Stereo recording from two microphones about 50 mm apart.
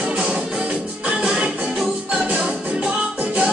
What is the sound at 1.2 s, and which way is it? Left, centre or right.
Music, centre.